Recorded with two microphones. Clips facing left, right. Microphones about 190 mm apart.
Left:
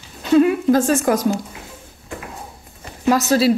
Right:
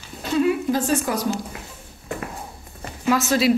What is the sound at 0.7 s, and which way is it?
Speech, 50° left (ahead or behind).